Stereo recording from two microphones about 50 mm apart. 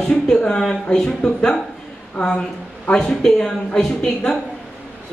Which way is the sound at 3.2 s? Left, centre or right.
Centre.